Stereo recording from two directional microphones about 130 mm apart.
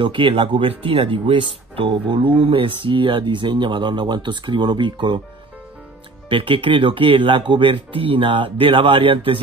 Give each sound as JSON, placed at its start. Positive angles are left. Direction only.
{"t": 0.0, "sound": "speech", "side_deg": -40}
{"t": 6.2, "sound": "speech", "side_deg": -40}